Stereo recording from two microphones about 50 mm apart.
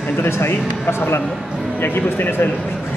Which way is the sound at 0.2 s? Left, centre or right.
Left.